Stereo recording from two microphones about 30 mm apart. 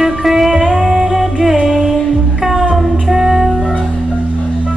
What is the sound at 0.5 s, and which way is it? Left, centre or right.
Music, right.